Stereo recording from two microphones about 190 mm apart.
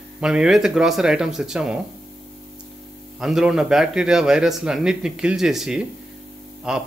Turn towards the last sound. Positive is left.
turn(degrees=-5)  # may be behind; listen again after turning